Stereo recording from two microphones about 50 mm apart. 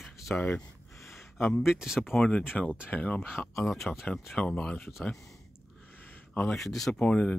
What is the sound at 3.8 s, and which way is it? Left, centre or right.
Speech, centre.